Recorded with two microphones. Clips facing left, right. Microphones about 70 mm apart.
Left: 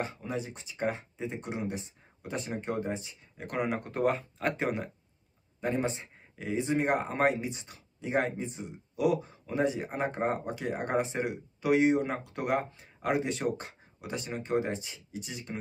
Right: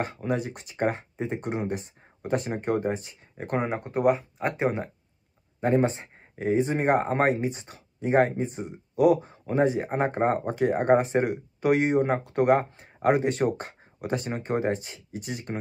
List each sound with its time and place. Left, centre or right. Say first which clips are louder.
0.0 s speech: right 6 dB; right
5.6 s speech: right 8 dB; right